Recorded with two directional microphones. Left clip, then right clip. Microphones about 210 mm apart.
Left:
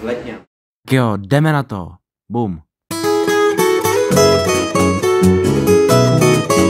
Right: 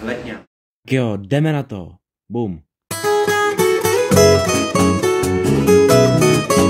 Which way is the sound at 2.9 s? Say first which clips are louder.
Left 1 dB; centre (ahead or behind).